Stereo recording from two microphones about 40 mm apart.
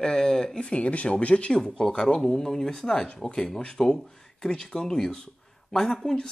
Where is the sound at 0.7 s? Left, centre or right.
Left.